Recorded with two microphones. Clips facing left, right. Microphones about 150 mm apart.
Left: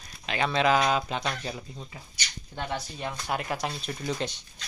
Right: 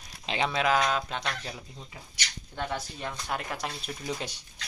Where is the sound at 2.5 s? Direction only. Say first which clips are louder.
Even; 15° left (ahead or behind).